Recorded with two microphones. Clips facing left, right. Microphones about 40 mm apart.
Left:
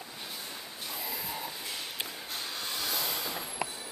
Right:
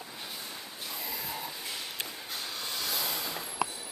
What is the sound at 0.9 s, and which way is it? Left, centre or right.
Snort, centre.